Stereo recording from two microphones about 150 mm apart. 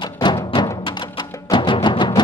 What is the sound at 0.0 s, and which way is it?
Music, 30° left (ahead or behind).